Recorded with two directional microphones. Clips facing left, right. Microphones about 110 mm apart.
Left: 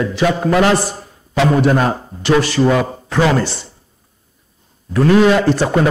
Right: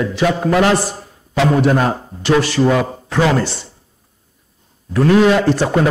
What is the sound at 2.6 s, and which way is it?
Speech, 20° left (ahead or behind).